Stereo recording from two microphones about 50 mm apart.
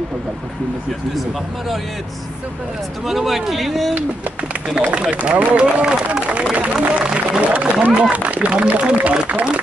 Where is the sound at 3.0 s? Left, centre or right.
Centre.